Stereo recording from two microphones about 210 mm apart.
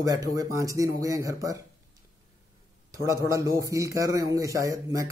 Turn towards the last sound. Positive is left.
turn(degrees=-15)  # may be behind; listen again after turning